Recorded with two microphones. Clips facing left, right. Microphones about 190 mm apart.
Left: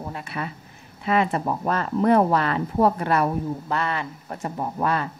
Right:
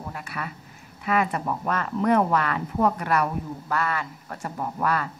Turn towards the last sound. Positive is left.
turn(degrees=25)  # may be behind; listen again after turning